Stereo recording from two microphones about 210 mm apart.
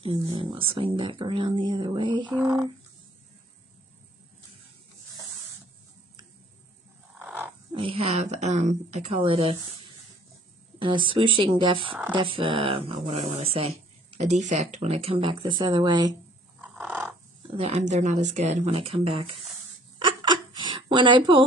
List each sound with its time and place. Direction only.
0.0 s speech: 25° right (ahead or behind)
2.3 s a sound: 15° right (ahead or behind)
7.2 s roaring cats: 10° right (ahead or behind)
7.7 s speech: 25° right (ahead or behind)
16.7 s a sound: 10° right (ahead or behind)
17.6 s speech: 30° right (ahead or behind)
20.0 s hiccup: 20° right (ahead or behind)